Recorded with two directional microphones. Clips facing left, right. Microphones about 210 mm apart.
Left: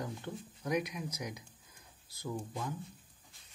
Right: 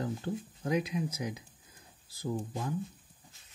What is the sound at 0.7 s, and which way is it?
Speech, 25° right (ahead or behind).